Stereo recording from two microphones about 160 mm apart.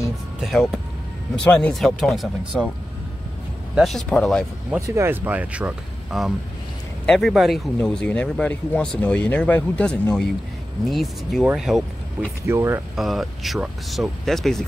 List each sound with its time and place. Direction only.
0.4 s speech: centre (ahead or behind)
3.7 s speech: centre (ahead or behind)
4.6 s speech: 15° right (ahead or behind)
12.4 s speech: 15° right (ahead or behind)
12.9 s speech: centre (ahead or behind)